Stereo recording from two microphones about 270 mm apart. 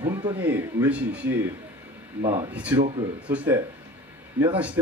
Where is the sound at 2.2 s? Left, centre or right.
Centre.